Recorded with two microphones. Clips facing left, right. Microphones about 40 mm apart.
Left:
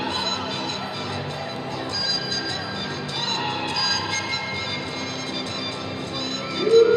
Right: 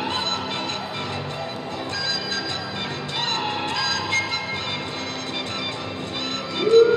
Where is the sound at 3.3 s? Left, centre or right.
Right.